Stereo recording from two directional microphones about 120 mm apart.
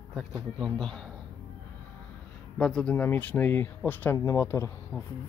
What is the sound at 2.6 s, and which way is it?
Speech, 5° left (ahead or behind).